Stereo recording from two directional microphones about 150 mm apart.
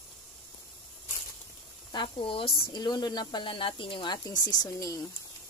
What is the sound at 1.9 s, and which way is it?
Speech, 30° left (ahead or behind).